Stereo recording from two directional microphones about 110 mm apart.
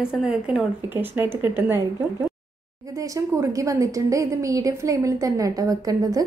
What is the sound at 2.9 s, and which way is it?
A woman's voice, 30° right (ahead or behind).